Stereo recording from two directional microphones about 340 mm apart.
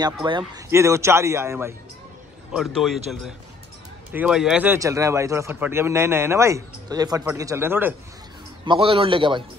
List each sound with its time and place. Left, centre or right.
0.0 s a man's voice: centre